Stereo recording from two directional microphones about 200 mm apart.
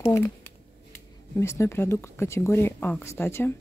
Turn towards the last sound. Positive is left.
turn(degrees=10)  # may be behind; listen again after turning